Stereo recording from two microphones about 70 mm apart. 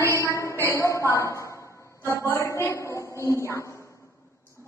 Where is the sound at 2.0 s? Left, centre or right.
Left.